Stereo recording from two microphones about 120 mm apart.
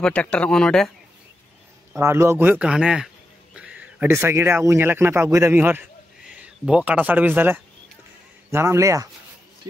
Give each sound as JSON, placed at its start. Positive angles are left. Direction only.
{"t": 0.0, "sound": "speech", "side_deg": 10}
{"t": 2.0, "sound": "a man's voice", "side_deg": -25}
{"t": 3.5, "sound": "a sound", "side_deg": -10}
{"t": 4.1, "sound": "a man's voice", "side_deg": -20}